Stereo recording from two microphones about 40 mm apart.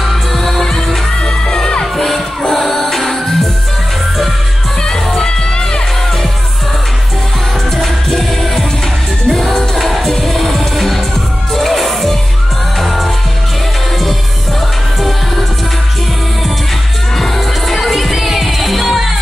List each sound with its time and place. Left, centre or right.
0.0 s music: centre
1.2 s music: left
2.0 s music: centre
4.8 s music: centre
7.7 s music: centre
17.2 s music: centre